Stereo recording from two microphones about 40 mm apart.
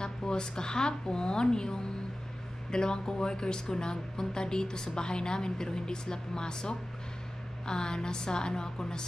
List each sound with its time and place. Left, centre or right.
0.0 s a woman's voice: centre